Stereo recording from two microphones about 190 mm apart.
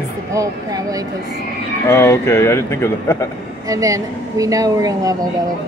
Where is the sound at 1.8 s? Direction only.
15° left (ahead or behind).